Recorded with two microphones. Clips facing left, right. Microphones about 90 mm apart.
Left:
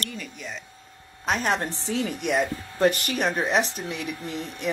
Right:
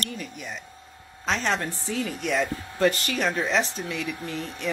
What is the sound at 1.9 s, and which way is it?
Speech, 20° left (ahead or behind).